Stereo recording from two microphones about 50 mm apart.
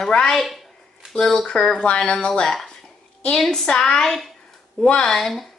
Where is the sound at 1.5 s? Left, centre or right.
Centre.